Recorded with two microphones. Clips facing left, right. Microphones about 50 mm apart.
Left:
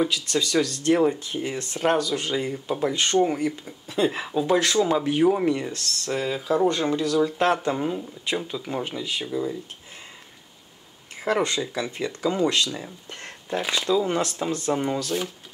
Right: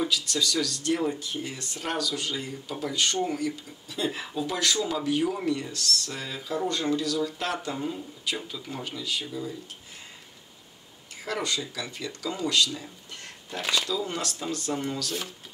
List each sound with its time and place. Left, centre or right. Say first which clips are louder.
0.1 s speech: left 4 dB; left
4.2 s speech: left 7 dB; centre; by 6.1 s left
6.1 s speech: left 9 dB; left
6.7 s speech: left 4 dB; left
11.2 s speech: left 7 dB; left
13.6 s speech: left 1 dB; centre
13.8 s speech: left 8 dB; left